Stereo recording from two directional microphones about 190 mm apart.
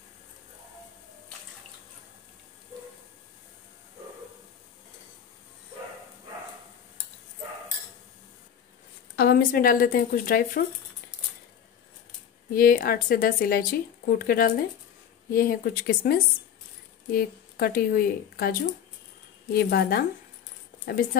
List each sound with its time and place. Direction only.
9.1 s speech: 55° left (ahead or behind)
12.5 s speech: 50° left (ahead or behind)